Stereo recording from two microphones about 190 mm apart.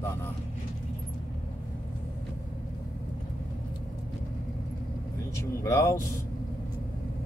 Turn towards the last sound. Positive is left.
turn(degrees=15)  # may be behind; listen again after turning